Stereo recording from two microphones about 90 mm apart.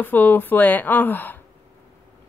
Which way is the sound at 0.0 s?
20° left (ahead or behind).